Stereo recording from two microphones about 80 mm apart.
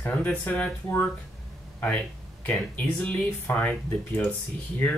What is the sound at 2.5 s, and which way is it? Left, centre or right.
Speech, centre.